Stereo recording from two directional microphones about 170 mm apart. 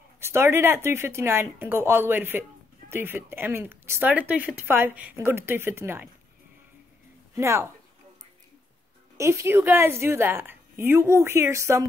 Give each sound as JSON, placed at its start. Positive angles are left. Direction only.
{"t": 0.2, "sound": "a woman's voice", "side_deg": -15}
{"t": 7.3, "sound": "a woman's voice", "side_deg": -15}
{"t": 9.1, "sound": "a woman's voice", "side_deg": -15}